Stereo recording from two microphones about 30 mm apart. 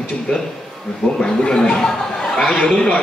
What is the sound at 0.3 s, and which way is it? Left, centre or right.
Speech, left.